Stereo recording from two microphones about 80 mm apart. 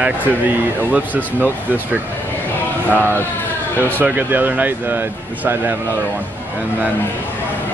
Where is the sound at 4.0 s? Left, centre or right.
Right.